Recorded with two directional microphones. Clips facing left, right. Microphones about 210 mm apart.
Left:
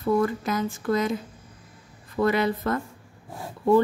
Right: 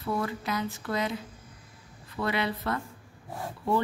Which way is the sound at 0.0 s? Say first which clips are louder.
Left 8 dB; 45° left (ahead or behind).